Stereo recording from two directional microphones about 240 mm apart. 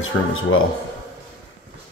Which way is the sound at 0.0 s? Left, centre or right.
Left.